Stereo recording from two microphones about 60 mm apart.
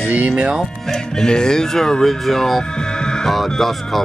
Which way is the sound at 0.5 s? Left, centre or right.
Centre.